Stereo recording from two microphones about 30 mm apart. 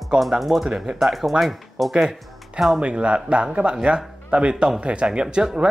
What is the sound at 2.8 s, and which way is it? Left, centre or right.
A man's voice, right.